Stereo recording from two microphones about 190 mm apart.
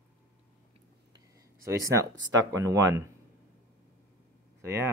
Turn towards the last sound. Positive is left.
turn(degrees=-15)  # may be behind; listen again after turning